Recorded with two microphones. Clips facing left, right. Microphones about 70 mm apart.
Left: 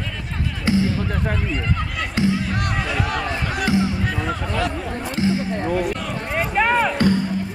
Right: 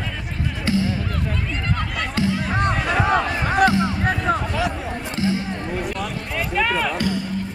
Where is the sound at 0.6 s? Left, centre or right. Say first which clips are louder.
Left 2 dB; left.